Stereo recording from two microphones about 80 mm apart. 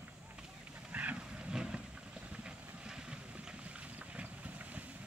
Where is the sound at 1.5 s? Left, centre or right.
Centre.